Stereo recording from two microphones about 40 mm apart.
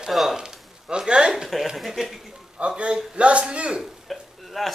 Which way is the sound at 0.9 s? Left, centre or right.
Right.